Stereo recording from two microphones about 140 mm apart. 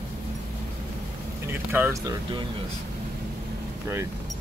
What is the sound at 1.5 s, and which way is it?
Speech, 15° right (ahead or behind).